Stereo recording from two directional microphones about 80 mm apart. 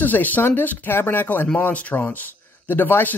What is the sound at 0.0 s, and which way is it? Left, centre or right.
Speech, left.